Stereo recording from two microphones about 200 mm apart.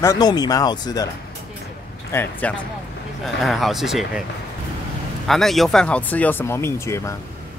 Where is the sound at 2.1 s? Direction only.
10° left (ahead or behind).